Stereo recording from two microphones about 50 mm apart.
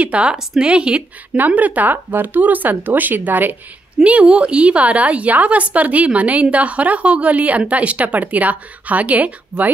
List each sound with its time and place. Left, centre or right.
0.0 s a woman's voice: right
1.3 s speech: right
4.0 s a woman's voice: right